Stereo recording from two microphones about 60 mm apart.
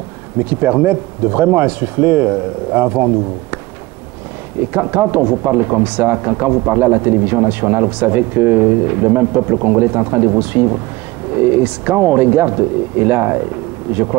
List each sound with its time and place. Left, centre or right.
0.4 s speech: right
4.6 s speech: right